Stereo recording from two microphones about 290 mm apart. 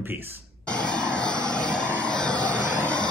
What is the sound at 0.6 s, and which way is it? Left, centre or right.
Vehicle, centre.